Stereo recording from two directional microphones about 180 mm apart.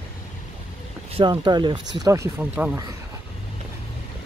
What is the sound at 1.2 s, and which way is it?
Speech, 25° right (ahead or behind).